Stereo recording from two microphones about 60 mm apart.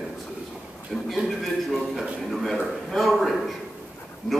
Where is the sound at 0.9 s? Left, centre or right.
Centre.